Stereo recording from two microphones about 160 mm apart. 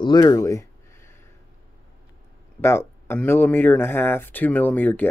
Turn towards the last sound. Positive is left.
turn(degrees=10)  # may be behind; listen again after turning